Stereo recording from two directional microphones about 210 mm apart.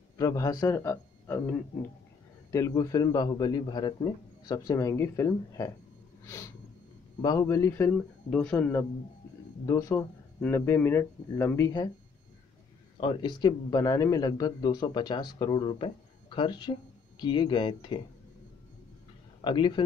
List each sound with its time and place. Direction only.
0.2 s a man's voice: 15° left (ahead or behind)
6.2 s a sound: 15° left (ahead or behind)
7.2 s a man's voice: 15° left (ahead or behind)
13.0 s a man's voice: 20° left (ahead or behind)
19.4 s a man's voice: 20° left (ahead or behind)